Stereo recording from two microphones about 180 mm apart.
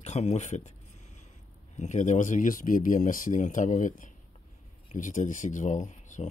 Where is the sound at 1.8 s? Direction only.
40° left (ahead or behind).